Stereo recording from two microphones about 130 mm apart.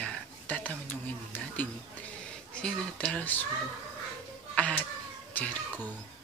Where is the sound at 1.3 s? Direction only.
15° left (ahead or behind).